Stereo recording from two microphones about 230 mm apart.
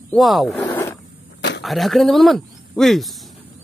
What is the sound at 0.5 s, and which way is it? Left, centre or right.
Zipper, centre.